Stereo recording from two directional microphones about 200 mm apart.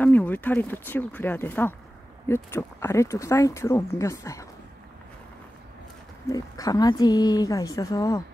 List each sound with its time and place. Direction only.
0.0 s speech: 10° left (ahead or behind)
6.3 s speech: 15° left (ahead or behind)